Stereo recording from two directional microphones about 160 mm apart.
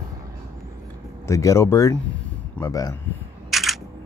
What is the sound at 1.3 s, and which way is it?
Speech, 20° left (ahead or behind).